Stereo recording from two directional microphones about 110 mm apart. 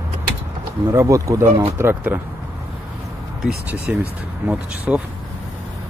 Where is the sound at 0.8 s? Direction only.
30° right (ahead or behind).